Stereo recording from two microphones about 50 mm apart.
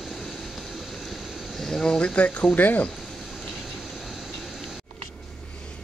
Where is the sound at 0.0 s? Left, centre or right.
Centre.